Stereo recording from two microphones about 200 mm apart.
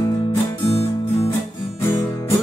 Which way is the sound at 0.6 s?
30° left (ahead or behind).